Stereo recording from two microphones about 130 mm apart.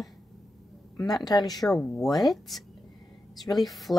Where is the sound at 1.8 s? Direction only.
10° left (ahead or behind).